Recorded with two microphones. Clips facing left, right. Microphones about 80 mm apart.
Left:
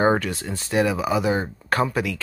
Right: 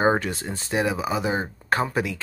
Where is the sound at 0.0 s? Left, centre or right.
Right.